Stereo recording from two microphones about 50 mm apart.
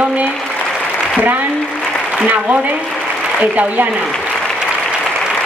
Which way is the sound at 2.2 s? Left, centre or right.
Right.